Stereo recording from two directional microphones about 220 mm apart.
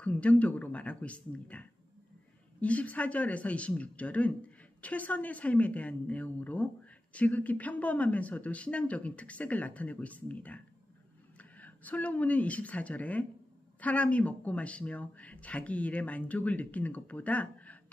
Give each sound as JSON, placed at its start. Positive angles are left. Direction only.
{"t": 0.0, "sound": "speech", "side_deg": 5}